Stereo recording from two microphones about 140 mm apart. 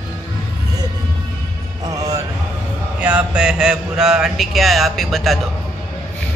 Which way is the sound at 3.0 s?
10° right (ahead or behind).